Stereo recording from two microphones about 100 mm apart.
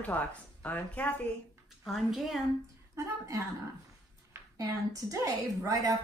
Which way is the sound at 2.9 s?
35° right (ahead or behind).